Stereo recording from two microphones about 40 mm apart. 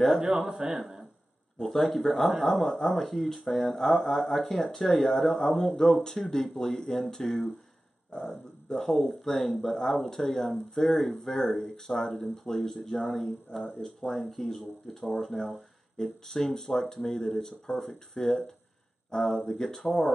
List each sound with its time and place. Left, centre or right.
0.2 s a man's voice: centre
1.6 s speech: centre
9.3 s speech: centre
13.1 s speech: centre